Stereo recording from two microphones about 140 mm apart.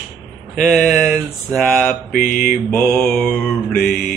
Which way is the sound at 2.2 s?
75° left (ahead or behind).